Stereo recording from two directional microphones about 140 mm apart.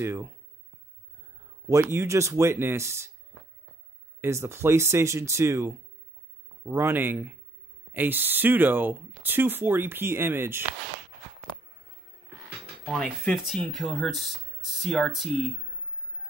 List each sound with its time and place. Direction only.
0.0 s speech: 20° right (ahead or behind)
1.7 s speech: 20° right (ahead or behind)
4.2 s speech: 20° right (ahead or behind)
12.8 s speech: 5° left (ahead or behind)